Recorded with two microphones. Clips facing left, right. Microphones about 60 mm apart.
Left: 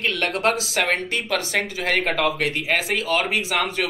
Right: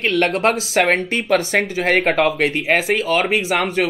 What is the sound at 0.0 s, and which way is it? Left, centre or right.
Speech, right.